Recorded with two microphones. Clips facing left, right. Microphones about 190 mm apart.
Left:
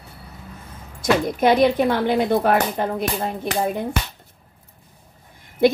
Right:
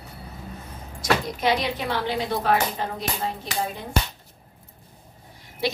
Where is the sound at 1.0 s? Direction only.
50° left (ahead or behind).